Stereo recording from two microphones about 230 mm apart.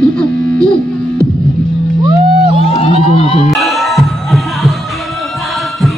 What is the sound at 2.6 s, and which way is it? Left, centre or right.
Music, left.